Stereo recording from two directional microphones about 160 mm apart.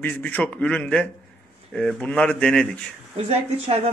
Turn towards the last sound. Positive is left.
turn(degrees=-40)  # may be behind; listen again after turning